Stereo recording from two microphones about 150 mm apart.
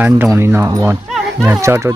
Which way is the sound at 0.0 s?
15° right (ahead or behind).